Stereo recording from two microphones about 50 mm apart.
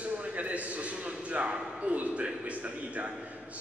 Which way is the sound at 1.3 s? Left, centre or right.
Right.